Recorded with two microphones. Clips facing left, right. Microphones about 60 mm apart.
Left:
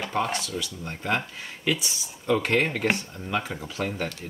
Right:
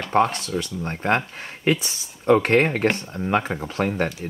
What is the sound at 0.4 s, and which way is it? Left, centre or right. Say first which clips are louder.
Speech: right 6 dB; right.